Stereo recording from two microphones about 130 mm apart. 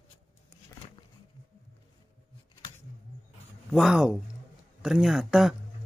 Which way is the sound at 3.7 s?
5° right (ahead or behind).